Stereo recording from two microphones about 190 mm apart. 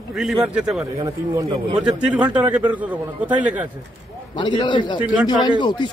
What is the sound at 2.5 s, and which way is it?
A man's voice, 10° right (ahead or behind).